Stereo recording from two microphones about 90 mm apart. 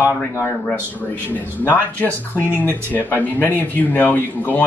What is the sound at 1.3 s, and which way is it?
Speech, 20° left (ahead or behind).